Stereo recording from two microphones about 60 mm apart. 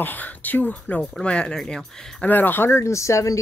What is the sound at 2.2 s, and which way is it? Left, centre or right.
Speech, left.